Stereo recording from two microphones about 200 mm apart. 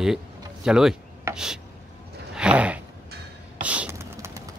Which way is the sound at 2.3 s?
5° right (ahead or behind).